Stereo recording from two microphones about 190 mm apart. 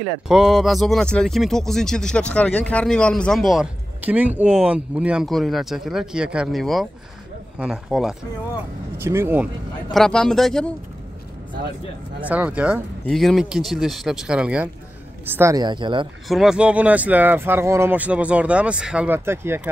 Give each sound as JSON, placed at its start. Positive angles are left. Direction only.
{"t": 0.3, "sound": "speech", "side_deg": 0}
{"t": 8.9, "sound": "speech", "side_deg": -15}
{"t": 9.9, "sound": "speech", "side_deg": 5}
{"t": 12.2, "sound": "speech", "side_deg": -10}
{"t": 16.3, "sound": "speech", "side_deg": 0}